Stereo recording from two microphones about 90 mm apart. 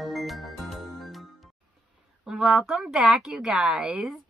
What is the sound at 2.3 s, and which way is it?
A woman's voice, 5° right (ahead or behind).